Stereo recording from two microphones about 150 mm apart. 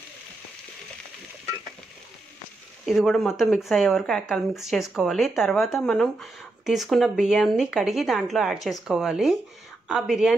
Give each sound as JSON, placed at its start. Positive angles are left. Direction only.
{"t": 2.8, "sound": "speech", "side_deg": 0}